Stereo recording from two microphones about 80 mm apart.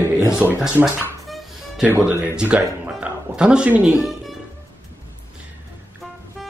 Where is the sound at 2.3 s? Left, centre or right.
Centre.